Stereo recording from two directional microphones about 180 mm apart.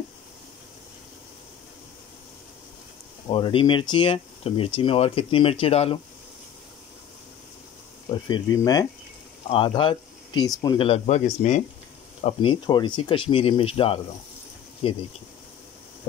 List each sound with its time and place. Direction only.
3.3 s speech: 30° left (ahead or behind)
8.1 s speech: 20° left (ahead or behind)